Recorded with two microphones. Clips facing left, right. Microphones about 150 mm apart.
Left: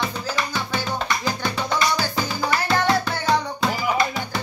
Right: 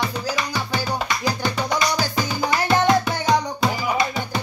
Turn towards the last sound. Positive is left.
turn(degrees=-20)  # may be behind; listen again after turning